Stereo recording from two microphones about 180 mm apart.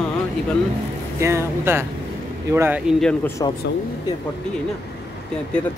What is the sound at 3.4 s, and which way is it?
Speech, 20° left (ahead or behind).